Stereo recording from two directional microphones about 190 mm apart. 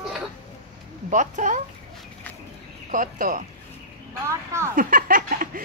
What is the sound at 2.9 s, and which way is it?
Speech, 45° right (ahead or behind).